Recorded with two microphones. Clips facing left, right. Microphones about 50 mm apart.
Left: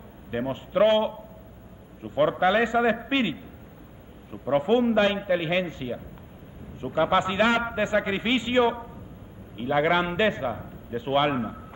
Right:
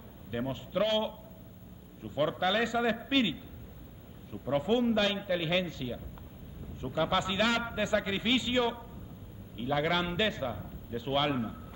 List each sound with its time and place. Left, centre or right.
0.3 s a man's voice: left